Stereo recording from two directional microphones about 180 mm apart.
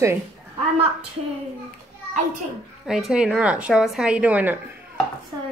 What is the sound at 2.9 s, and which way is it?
A woman's voice, 5° right (ahead or behind).